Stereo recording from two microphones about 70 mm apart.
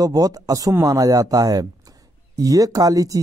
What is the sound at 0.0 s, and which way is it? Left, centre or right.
A man's voice, right.